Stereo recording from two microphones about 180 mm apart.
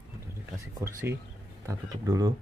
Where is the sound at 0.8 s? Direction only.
15° right (ahead or behind).